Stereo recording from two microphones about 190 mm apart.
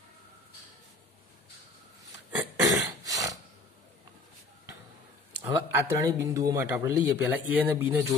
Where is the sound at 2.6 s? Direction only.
20° right (ahead or behind).